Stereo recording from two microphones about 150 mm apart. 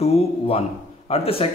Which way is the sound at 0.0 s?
40° left (ahead or behind).